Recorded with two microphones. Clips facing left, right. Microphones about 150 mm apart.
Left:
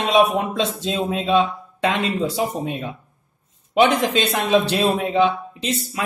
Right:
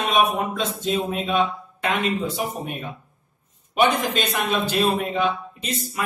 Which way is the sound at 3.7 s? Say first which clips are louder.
Left 4 dB; 85° left.